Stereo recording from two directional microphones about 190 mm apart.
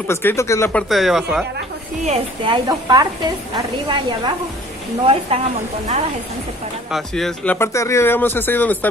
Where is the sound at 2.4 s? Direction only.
25° right (ahead or behind).